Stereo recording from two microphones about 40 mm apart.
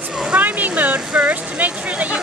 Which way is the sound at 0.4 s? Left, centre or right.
Right.